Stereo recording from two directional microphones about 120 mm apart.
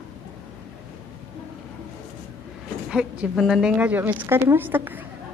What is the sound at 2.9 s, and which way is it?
Speech, 5° right (ahead or behind).